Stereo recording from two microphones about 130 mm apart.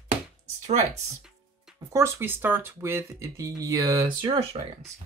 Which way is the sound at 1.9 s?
20° right (ahead or behind).